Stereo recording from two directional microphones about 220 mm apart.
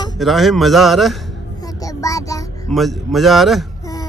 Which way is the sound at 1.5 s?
15° left (ahead or behind).